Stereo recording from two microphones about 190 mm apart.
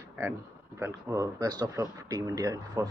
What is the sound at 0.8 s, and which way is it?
Speech, 15° right (ahead or behind).